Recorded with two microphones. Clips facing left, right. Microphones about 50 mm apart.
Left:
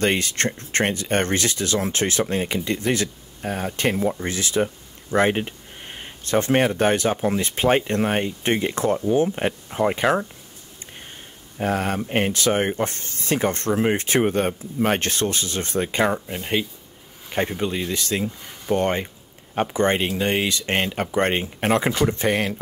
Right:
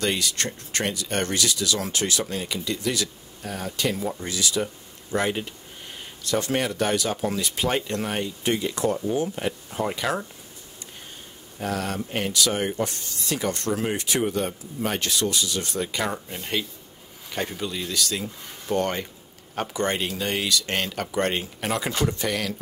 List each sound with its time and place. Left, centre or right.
0.0 s speech: left
11.5 s speech: left
16.1 s speech: centre
17.3 s speech: left